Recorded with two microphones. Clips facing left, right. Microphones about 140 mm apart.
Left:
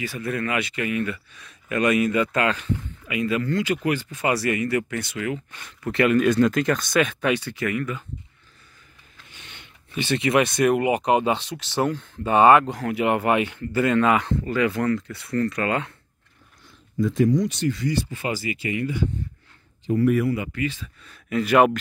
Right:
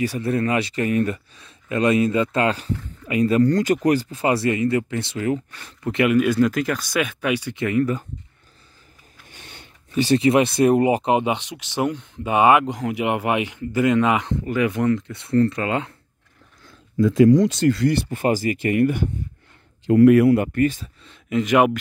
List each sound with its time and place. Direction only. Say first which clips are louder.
0.0 s speech: right 6 dB; 35° right (ahead or behind)
5.9 s speech: right 1 dB; 15° right (ahead or behind)
7.5 s speech: right 6 dB; 25° right (ahead or behind)
9.3 s speech: right 3 dB; 45° right (ahead or behind); by 15.9 s 25° right (ahead or behind)
16.9 s speech: right 6 dB; 90° right
18.1 s speech: right 7 dB; 45° right (ahead or behind)
19.9 s speech: right 8 dB; 80° right; by 20.9 s 45° right (ahead or behind)
21.0 s speech: right 3 dB; 20° right (ahead or behind)